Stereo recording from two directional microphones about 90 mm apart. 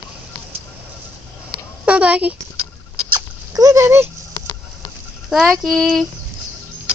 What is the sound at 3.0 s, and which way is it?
Dog, 50° right (ahead or behind).